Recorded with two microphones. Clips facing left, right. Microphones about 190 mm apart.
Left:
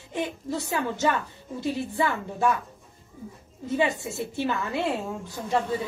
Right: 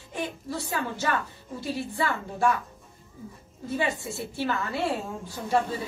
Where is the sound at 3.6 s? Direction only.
20° left (ahead or behind).